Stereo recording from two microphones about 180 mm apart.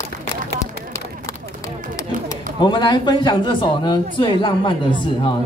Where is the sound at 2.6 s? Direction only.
25° left (ahead or behind).